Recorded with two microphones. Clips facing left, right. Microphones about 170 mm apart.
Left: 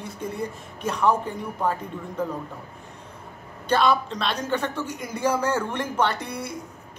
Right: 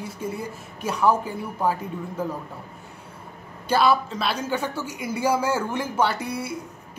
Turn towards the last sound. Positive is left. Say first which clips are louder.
# right 1 dB
turn(degrees=-5)  # may be behind; listen again after turning